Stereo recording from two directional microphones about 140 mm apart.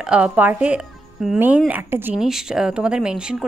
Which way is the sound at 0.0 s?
10° right (ahead or behind).